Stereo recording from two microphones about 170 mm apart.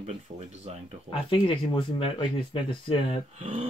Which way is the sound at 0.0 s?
40° right (ahead or behind).